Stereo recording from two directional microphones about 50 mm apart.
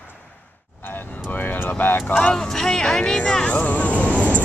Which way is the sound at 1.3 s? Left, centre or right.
Left.